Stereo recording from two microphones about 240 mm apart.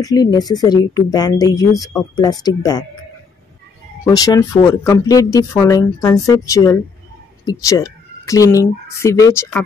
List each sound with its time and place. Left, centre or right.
0.0 s speech: centre
4.0 s speech: centre